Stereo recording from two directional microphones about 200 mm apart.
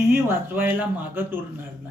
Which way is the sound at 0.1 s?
10° right (ahead or behind).